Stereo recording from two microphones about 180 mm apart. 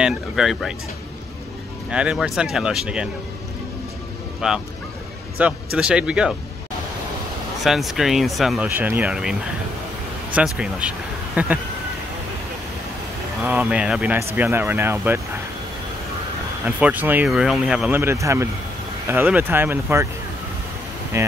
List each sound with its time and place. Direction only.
0.0 s speech: 5° right (ahead or behind)
1.9 s speech: 5° right (ahead or behind)
4.4 s speech: 5° right (ahead or behind)
7.6 s speech: centre (ahead or behind)
8.6 s speech: 10° right (ahead or behind)
13.4 s speech: 5° right (ahead or behind)
16.6 s speech: 10° right (ahead or behind)
21.1 s speech: 15° right (ahead or behind)